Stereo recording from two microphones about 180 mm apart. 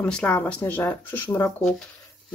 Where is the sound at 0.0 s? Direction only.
10° left (ahead or behind).